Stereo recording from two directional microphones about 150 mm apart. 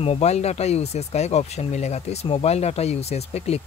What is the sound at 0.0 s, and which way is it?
Speech, 45° left (ahead or behind).